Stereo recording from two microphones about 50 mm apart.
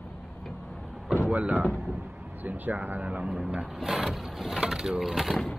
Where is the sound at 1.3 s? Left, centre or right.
Right.